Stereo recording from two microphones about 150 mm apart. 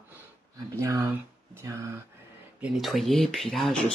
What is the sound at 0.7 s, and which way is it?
Speech, 20° right (ahead or behind).